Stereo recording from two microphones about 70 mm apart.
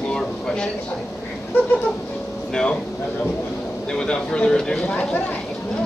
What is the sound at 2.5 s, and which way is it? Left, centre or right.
Speech, centre.